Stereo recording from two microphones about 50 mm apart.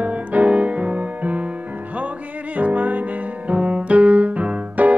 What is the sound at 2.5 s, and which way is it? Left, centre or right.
Music, right.